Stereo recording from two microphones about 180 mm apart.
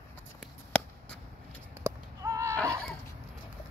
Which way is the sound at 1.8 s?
15° right (ahead or behind).